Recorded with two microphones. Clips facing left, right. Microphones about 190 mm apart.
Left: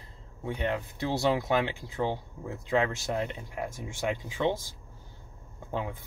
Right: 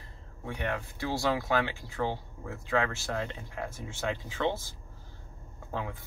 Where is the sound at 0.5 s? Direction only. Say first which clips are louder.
Left 3 dB; 20° left (ahead or behind).